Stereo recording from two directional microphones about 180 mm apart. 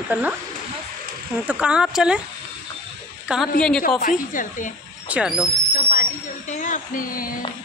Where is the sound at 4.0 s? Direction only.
50° left (ahead or behind).